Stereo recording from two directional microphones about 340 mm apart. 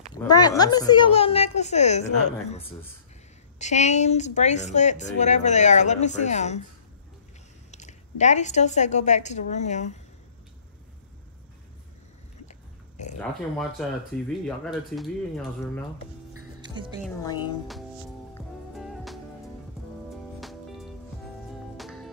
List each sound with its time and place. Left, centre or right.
0.4 s a woman's voice: centre
3.5 s a woman's voice: centre
7.7 s a woman's voice: left
13.2 s speech: centre
16.6 s speech: centre
17.0 s a woman's voice: centre
18.3 s music: centre
20.3 s music: centre